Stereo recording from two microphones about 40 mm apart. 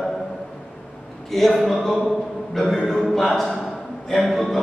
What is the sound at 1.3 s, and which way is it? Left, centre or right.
Speech, centre.